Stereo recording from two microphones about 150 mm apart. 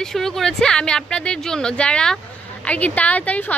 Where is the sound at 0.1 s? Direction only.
Centre (ahead or behind).